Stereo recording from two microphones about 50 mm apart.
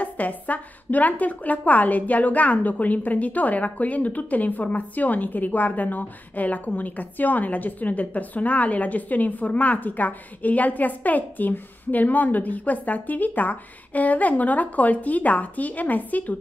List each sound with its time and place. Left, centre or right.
0.0 s a woman's voice: left